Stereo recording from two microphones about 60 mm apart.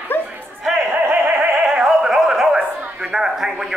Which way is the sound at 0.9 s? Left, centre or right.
Right.